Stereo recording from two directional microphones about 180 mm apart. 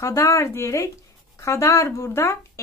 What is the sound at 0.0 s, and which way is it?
Speech, 20° left (ahead or behind).